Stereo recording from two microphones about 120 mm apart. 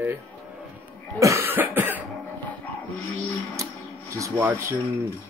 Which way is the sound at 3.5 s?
25° right (ahead or behind).